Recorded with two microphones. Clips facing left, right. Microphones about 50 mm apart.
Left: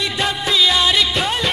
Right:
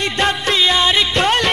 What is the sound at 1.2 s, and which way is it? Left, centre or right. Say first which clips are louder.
Music: right 5 dB; right.